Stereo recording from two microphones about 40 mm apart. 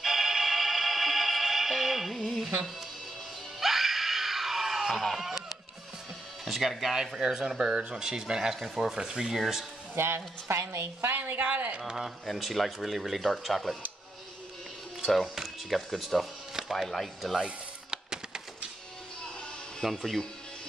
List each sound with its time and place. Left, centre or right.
0.0 s music: centre
2.1 s speech: centre
3.5 s screaming: centre
6.4 s speech: centre
9.9 s a woman's voice: right
11.1 s speech: right
12.0 s speech: centre
15.3 s speech: centre
17.9 s a sound: centre
19.8 s speech: centre